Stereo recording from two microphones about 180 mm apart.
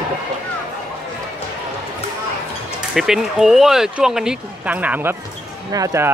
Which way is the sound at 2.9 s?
Centre (ahead or behind).